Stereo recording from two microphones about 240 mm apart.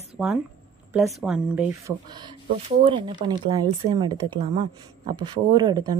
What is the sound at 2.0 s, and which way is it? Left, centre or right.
Speech, centre.